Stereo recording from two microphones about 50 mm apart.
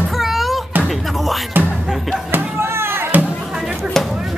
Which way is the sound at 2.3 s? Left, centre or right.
Right.